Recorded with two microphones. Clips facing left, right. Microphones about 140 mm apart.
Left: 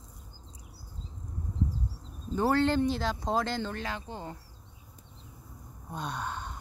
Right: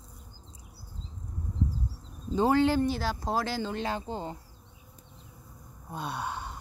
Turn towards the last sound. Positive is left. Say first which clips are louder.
# right 1 dB
turn(degrees=-10)  # may be behind; listen again after turning